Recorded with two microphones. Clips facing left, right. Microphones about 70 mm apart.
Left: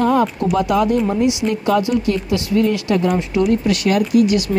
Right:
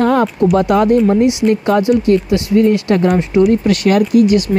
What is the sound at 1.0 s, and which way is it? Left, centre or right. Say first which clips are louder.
A woman's voice: right 6 dB; right.